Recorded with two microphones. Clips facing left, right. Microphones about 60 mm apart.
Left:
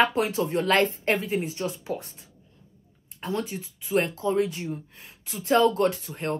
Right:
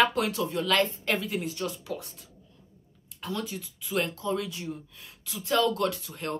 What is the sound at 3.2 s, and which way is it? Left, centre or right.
Speech, left.